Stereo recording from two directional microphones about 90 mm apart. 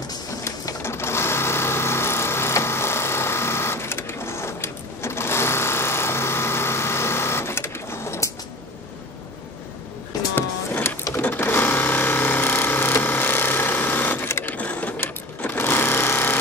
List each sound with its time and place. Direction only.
0.4 s sewing machine: 30° left (ahead or behind)
10.3 s vehicle: 20° left (ahead or behind)
11.1 s sewing machine: 20° left (ahead or behind)